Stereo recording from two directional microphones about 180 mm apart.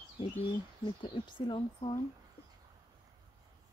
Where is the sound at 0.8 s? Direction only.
25° left (ahead or behind).